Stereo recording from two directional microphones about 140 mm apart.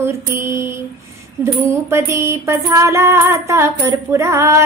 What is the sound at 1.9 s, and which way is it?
Music, 20° right (ahead or behind).